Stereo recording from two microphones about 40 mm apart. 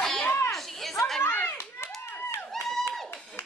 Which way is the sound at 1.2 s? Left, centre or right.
Left.